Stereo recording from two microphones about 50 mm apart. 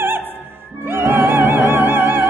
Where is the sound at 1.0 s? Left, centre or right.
Right.